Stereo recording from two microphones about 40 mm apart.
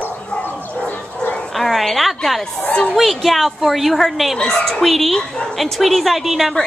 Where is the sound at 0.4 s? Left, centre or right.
Left.